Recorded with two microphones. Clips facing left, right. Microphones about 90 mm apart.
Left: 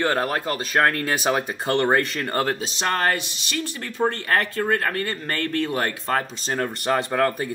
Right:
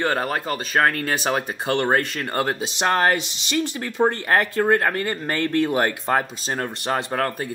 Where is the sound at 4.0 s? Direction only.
30° right (ahead or behind).